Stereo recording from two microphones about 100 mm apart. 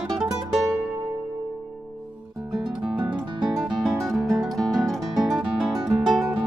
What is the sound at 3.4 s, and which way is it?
Guitar, 5° right (ahead or behind).